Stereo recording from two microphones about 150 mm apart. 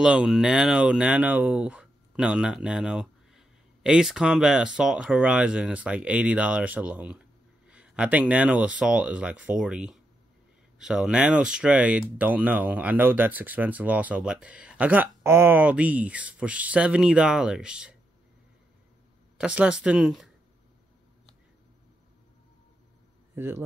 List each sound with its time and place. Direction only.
0.0 s speech: 5° right (ahead or behind)
19.3 s speech: 5° right (ahead or behind)
23.3 s a man's voice: 15° right (ahead or behind)